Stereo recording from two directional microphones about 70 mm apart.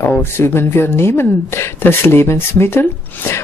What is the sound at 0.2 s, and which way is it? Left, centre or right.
Speech, left.